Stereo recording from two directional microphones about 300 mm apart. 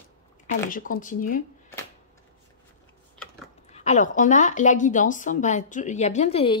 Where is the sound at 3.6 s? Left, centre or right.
Left.